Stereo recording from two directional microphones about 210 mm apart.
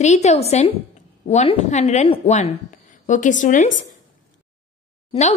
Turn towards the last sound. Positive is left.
turn(degrees=30)  # may be behind; listen again after turning